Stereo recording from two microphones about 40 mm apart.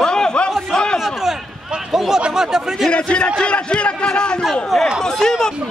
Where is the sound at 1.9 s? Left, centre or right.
Centre.